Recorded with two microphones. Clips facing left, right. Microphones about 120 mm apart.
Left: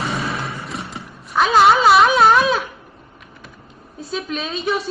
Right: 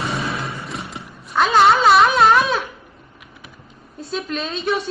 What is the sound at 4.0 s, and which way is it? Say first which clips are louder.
Speech: even; centre (ahead or behind).